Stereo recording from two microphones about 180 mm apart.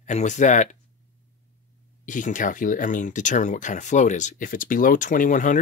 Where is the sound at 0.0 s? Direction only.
40° left (ahead or behind).